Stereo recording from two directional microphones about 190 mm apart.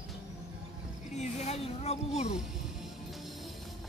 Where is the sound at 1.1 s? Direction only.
35° left (ahead or behind).